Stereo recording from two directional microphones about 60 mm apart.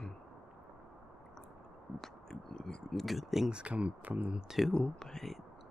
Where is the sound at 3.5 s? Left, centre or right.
Centre.